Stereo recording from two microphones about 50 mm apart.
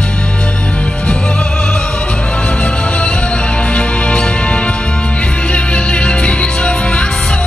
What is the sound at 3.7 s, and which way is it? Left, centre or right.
Music, left.